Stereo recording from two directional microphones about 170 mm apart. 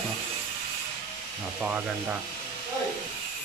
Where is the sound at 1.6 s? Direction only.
10° right (ahead or behind).